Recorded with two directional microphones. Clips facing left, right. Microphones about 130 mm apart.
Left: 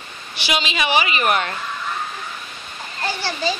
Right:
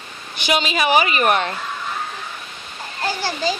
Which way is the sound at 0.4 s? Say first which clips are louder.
Right 3 dB; 45° right (ahead or behind).